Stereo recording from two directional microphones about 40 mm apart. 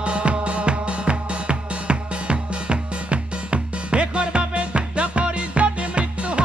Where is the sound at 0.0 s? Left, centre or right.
Right.